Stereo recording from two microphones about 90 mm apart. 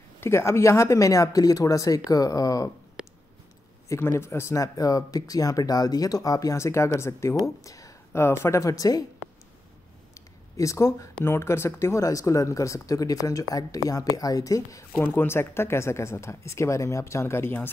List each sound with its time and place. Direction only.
0.2 s speech: 30° left (ahead or behind)
3.0 s a sound: 10° right (ahead or behind)
3.9 s speech: 30° left (ahead or behind)
10.1 s a sound: 35° left (ahead or behind)
11.2 s speech: 30° left (ahead or behind)
14.9 s speech: 25° left (ahead or behind)